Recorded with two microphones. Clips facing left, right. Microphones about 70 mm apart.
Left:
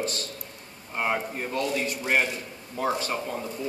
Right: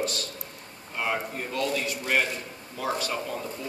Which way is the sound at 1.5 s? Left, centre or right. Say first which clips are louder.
Even; left.